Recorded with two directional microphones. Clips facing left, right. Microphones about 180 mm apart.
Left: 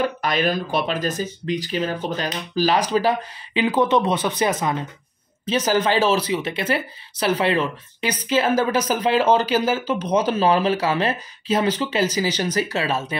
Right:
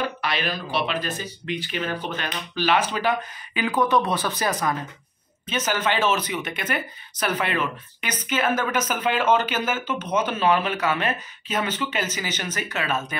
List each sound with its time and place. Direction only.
0.2 s speech: 45° left (ahead or behind)
3.6 s speech: 25° left (ahead or behind)
5.5 s speech: 35° left (ahead or behind)